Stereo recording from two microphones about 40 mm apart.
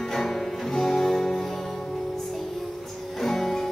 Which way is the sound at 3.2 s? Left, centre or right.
Centre.